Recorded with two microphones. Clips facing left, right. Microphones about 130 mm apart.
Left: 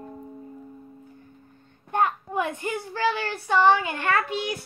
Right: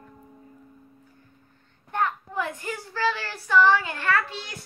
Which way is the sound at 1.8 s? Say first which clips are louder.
Left 3 dB; 15° left (ahead or behind).